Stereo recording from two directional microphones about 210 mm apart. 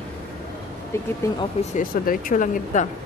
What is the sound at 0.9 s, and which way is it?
Speech, 10° left (ahead or behind).